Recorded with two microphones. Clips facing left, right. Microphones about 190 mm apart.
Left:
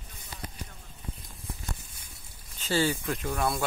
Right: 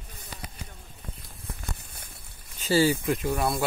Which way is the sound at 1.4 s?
60° right (ahead or behind).